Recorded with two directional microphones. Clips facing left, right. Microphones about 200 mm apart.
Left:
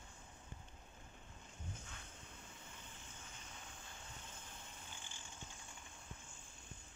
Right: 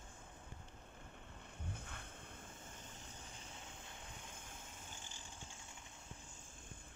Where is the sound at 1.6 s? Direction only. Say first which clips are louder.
Right 3 dB; 60° right (ahead or behind).